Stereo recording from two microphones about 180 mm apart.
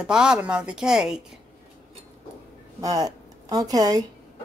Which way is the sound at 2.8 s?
20° right (ahead or behind).